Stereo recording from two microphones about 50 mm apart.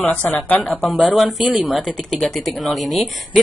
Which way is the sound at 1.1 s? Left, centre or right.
Centre.